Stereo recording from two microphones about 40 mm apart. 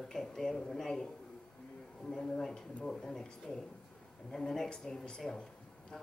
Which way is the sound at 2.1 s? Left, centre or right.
Centre.